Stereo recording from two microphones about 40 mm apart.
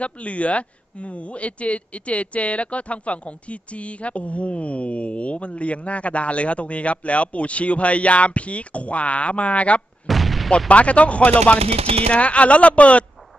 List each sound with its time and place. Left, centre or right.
0.0 s a man's voice: left
10.0 s artillery fire: centre
10.7 s a man's voice: left